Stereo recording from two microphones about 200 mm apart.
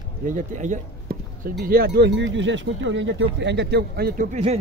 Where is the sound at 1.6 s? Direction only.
50° right (ahead or behind).